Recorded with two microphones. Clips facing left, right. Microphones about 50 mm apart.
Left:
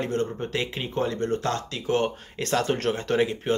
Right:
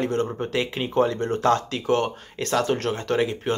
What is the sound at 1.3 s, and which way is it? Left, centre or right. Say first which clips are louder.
Speech: right 6 dB; right.